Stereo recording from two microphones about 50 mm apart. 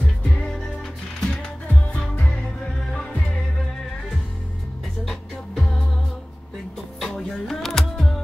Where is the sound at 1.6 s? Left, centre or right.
Left.